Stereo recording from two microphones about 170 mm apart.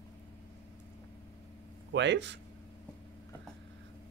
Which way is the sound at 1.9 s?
90° right.